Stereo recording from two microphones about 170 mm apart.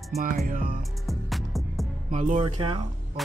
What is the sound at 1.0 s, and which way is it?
Music, centre (ahead or behind).